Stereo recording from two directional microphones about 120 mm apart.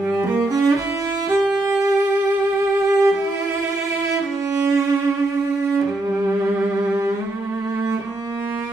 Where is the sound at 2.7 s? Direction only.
30° right (ahead or behind).